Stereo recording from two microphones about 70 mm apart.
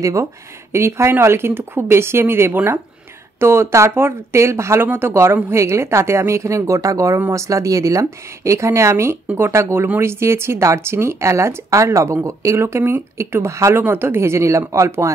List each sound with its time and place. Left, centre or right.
0.0 s a woman's voice: right
0.7 s a woman's voice: right